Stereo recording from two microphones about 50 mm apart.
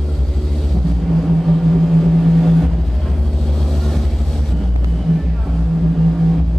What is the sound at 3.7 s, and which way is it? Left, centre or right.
Vehicle, centre.